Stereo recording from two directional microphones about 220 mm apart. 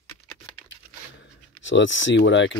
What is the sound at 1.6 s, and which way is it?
Speech, 55° left (ahead or behind).